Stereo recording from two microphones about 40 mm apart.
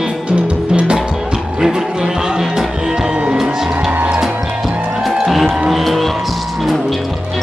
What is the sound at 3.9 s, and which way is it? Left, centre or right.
Music, right.